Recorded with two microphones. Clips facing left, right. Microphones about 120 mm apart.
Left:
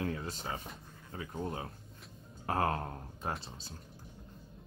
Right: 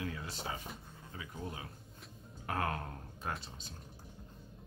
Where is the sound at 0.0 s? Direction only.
45° left (ahead or behind).